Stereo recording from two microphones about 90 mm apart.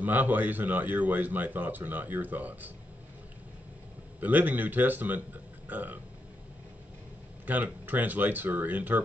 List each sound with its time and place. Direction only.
0.0 s a man's voice: 20° right (ahead or behind)
4.2 s a man's voice: 20° right (ahead or behind)
7.4 s a man's voice: 20° right (ahead or behind)